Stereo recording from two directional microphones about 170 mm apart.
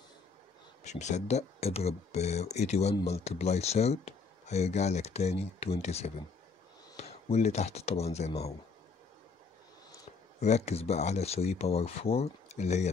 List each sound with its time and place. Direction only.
0.8 s speech: 45° left (ahead or behind)
10.4 s speech: 40° left (ahead or behind)